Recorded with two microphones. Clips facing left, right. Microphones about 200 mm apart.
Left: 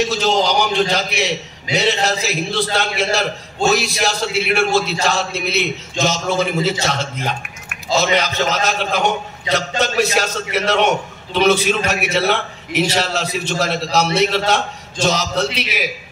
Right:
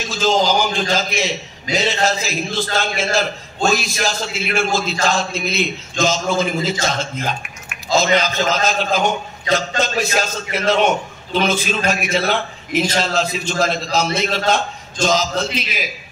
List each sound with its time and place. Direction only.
0.0 s a man's voice: 70° left (ahead or behind)